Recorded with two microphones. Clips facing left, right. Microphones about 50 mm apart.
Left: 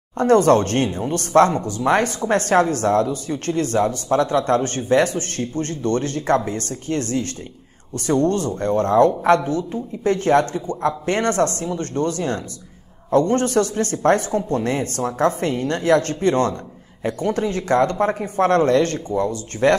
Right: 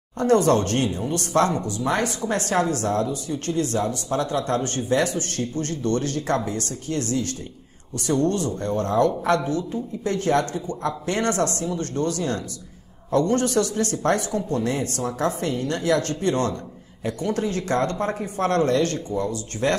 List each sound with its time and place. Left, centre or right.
0.2 s a woman's voice: left